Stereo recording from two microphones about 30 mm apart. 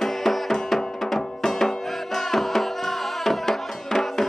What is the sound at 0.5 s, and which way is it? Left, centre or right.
Music, centre.